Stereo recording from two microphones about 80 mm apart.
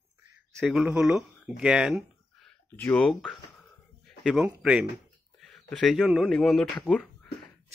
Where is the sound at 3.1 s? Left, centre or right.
Centre.